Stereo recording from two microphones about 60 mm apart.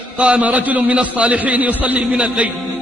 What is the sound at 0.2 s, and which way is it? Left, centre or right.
A man's voice, right.